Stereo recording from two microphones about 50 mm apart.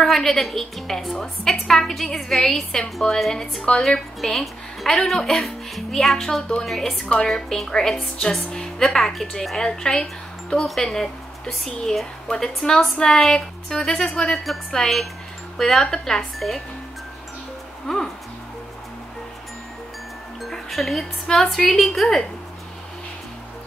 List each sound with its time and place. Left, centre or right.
0.0 s a woman's voice: centre
17.8 s a woman's voice: centre
20.4 s speech: centre